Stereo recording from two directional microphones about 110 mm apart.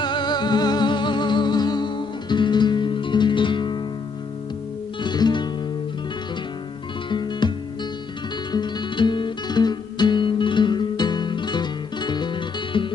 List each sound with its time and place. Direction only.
0.0 s music: 40° left (ahead or behind)
5.0 s music: 40° left (ahead or behind)
7.1 s music: 45° left (ahead or behind)